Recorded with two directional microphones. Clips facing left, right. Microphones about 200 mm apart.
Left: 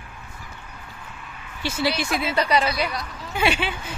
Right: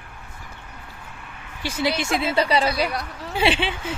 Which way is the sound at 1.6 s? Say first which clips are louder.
Even; 15° right (ahead or behind).